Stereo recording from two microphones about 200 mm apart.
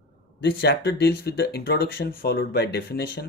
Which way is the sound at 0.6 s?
55° left (ahead or behind).